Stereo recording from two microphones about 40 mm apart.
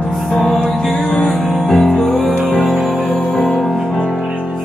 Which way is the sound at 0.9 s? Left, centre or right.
Left.